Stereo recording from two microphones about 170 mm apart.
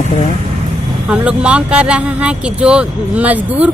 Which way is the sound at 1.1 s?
5° right (ahead or behind).